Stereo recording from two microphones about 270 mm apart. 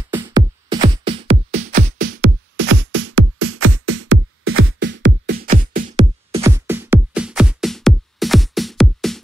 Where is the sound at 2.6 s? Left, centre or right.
Right.